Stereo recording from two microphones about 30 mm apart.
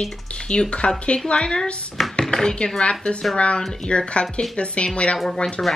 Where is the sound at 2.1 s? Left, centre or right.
Left.